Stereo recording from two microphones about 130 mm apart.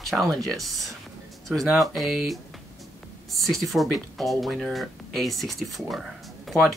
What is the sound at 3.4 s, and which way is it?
Speech, centre (ahead or behind).